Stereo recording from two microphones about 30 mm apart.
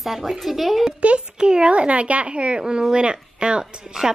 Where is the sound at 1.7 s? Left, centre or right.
Right.